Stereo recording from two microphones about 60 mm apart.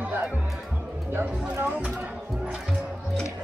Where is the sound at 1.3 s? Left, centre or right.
Centre.